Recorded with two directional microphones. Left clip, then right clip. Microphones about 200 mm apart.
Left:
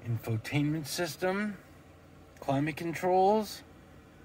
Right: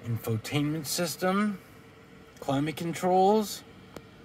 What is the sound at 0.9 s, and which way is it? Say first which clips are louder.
Speech: right 4 dB; 25° right (ahead or behind).